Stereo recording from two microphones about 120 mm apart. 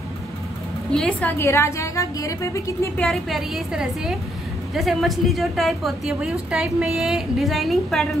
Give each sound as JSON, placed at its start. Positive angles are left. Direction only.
{"t": 0.9, "sound": "a woman's voice", "side_deg": 5}
{"t": 1.4, "sound": "a woman's voice", "side_deg": 20}
{"t": 3.0, "sound": "a woman's voice", "side_deg": 0}